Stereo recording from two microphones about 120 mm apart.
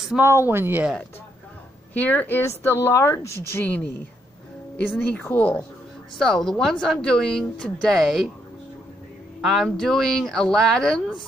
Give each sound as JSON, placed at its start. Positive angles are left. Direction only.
{"t": 0.2, "sound": "speech", "side_deg": -20}
{"t": 2.0, "sound": "speech", "side_deg": 15}
{"t": 9.4, "sound": "speech", "side_deg": 0}